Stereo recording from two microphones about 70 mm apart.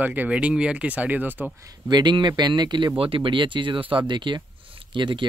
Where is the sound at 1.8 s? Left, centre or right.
Right.